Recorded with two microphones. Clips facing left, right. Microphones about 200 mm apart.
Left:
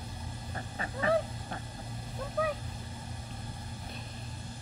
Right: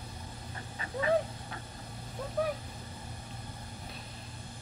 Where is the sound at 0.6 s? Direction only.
40° left (ahead or behind).